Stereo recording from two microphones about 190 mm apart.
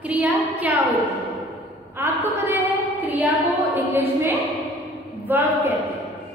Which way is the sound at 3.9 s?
10° right (ahead or behind).